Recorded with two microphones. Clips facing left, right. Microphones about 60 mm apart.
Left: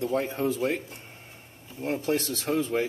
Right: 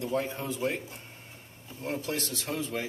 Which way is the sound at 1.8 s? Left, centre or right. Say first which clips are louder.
Left 6 dB; left.